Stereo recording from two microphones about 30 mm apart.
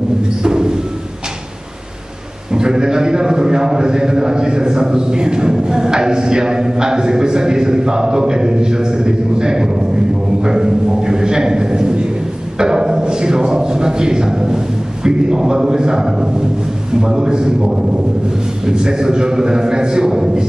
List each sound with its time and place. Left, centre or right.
0.4 s music: right
2.5 s a man's voice: right
10.4 s a sound: right
12.5 s a man's voice: right